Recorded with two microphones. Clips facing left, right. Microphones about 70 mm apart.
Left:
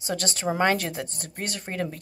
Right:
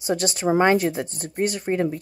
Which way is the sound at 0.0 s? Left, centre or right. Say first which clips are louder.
Right 5 dB; centre.